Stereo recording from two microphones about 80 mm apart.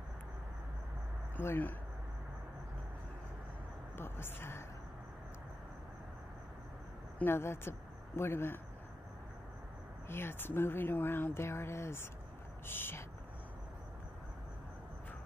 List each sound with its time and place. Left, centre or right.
1.3 s speech: left
3.9 s speech: left
7.2 s speech: left
10.0 s speech: left